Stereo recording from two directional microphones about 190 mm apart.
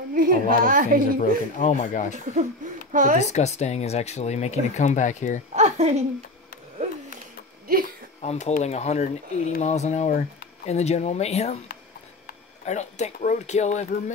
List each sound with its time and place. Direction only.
0.1 s speech: 45° right (ahead or behind)
1.2 s speech: 40° left (ahead or behind)
2.1 s speech: 40° right (ahead or behind)
3.2 s speech: 35° left (ahead or behind)
5.5 s a woman's voice: 35° right (ahead or behind)
8.2 s speech: 35° left (ahead or behind)
12.6 s speech: 35° left (ahead or behind)